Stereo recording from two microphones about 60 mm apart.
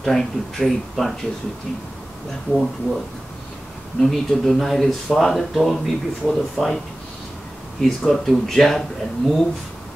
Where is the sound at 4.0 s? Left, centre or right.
Centre.